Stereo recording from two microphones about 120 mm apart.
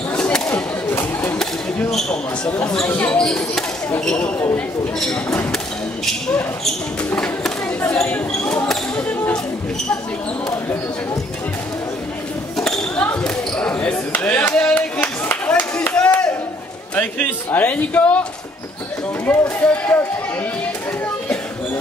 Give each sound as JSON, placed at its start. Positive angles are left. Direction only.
{"t": 0.1, "sound": "whip", "side_deg": 10}
{"t": 0.9, "sound": "a sound", "side_deg": 15}
{"t": 1.4, "sound": "a sound", "side_deg": 5}
{"t": 2.9, "sound": "speech", "side_deg": 15}
{"t": 3.2, "sound": "speech", "side_deg": 5}
{"t": 7.1, "sound": "speech", "side_deg": 5}
{"t": 12.5, "sound": "basketball bounce", "side_deg": 5}
{"t": 16.9, "sound": "speech", "side_deg": 10}
{"t": 19.2, "sound": "speech", "side_deg": 15}